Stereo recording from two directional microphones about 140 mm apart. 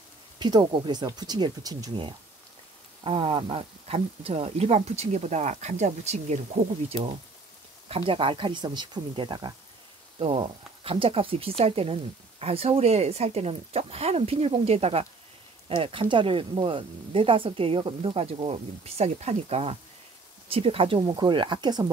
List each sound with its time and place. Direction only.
0.4 s speech: 30° right (ahead or behind); by 7.0 s 55° right (ahead or behind)
7.9 s speech: 40° right (ahead or behind)